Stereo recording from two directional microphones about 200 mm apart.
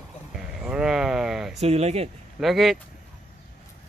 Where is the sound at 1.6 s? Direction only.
30° right (ahead or behind).